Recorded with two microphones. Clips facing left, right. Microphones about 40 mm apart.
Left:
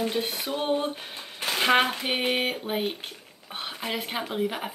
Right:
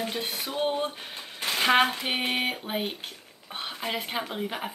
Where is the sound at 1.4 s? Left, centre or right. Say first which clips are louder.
Even; centre.